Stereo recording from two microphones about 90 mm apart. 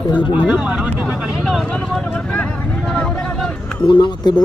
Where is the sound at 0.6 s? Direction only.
5° right (ahead or behind).